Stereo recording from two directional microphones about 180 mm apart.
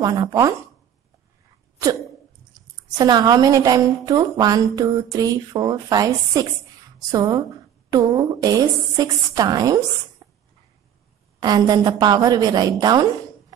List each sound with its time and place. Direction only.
0.0 s a woman's voice: 20° right (ahead or behind)
3.0 s a woman's voice: 20° right (ahead or behind)
11.3 s a woman's voice: 25° right (ahead or behind)